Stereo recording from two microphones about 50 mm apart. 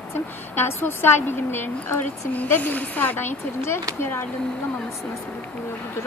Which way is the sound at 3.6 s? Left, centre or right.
Left.